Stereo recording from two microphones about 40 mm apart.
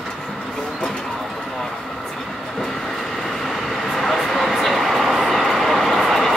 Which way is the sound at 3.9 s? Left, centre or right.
Centre.